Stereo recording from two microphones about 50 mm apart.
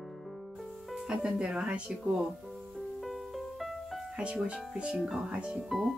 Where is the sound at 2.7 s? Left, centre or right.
Centre.